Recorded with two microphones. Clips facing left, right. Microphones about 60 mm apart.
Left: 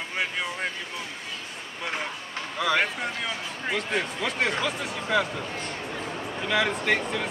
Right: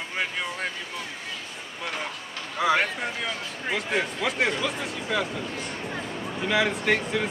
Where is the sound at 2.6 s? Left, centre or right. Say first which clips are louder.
Right 3 dB; centre.